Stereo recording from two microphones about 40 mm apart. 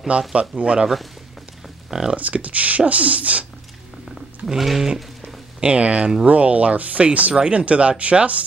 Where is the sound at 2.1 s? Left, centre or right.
Right.